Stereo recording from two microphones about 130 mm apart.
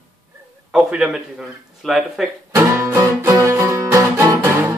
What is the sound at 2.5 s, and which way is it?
Music, 20° right (ahead or behind).